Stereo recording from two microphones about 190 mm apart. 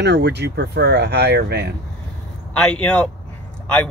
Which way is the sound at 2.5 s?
5° left (ahead or behind).